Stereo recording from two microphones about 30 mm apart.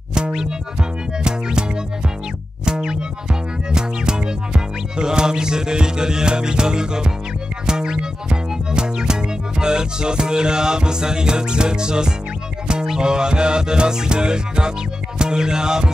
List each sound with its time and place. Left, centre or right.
0.1 s music: right